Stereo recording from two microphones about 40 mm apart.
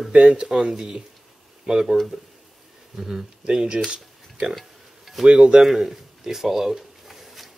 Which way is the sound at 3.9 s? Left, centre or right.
Centre.